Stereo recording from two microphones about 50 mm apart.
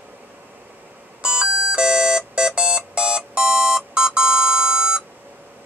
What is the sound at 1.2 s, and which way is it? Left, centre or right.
Alarm clock, centre.